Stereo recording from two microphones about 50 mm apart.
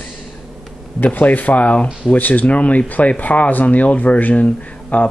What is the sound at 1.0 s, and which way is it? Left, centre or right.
Speech, left.